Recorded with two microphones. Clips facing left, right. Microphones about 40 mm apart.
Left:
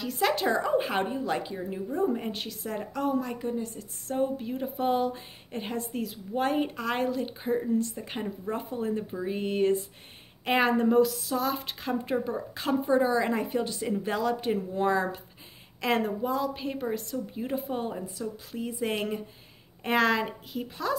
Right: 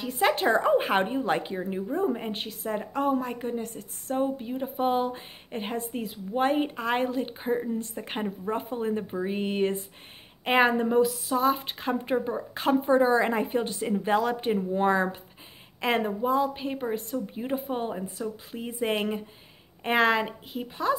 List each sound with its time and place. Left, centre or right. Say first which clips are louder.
0.0 s a woman's voice: right 2 dB; right
2.0 s a woman's voice: right 1 dB; centre
2.3 s a woman's voice: right 3 dB; right
4.1 s a woman's voice: right 1 dB; centre
7.8 s a woman's voice: right 1 dB; right; by 20.9 s centre